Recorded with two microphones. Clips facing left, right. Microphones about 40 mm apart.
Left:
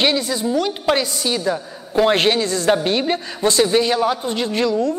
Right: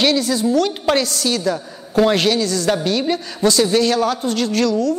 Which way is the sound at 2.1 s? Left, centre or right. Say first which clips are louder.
Even; left.